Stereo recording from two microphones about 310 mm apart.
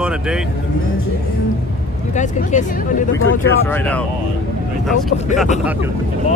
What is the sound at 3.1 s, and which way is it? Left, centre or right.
Speech, left.